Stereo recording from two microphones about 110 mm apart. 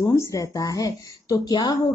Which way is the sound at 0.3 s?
30° left (ahead or behind).